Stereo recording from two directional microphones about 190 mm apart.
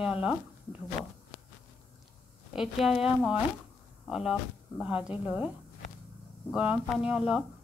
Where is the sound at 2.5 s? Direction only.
Centre (ahead or behind).